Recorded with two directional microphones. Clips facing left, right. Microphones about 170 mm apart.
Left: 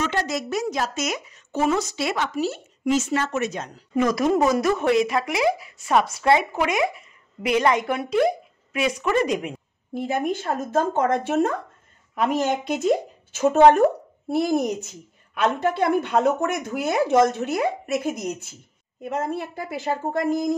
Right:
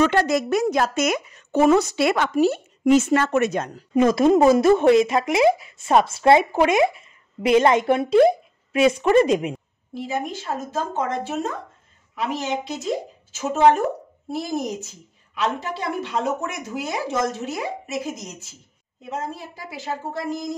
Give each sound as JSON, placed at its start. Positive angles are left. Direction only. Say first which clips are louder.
{"t": 0.0, "sound": "a woman's voice", "louder": "right 7 dB", "side_deg": -55}
{"t": 3.9, "sound": "speech", "louder": "right 4 dB", "side_deg": -25}
{"t": 9.9, "sound": "speech", "louder": "left 3 dB", "side_deg": 55}
{"t": 12.2, "sound": "speech", "louder": "left 3 dB", "side_deg": 50}